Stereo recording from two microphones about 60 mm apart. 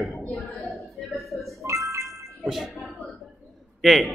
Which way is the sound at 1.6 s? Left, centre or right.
Right.